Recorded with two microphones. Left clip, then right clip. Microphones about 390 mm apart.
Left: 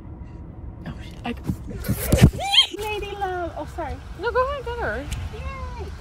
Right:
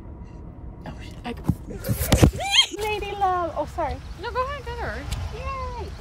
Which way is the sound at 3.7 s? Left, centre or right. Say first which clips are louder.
Right 3 dB; centre.